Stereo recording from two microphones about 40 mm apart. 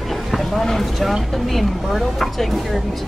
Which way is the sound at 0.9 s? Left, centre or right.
Centre.